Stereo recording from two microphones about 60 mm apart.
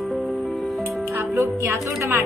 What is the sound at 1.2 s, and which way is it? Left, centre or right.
Music, right.